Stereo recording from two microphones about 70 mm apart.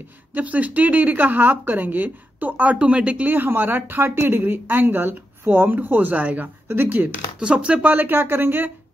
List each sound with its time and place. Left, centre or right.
0.3 s speech: right
3.3 s speech: right
7.3 s speech: centre; by 8.7 s right